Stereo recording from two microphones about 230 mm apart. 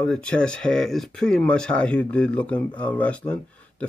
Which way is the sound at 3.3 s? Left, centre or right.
Centre.